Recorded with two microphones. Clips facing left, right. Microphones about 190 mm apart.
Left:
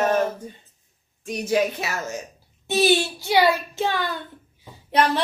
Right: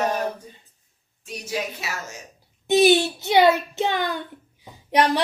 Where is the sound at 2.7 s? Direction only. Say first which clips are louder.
Right 3 dB; 15° right (ahead or behind).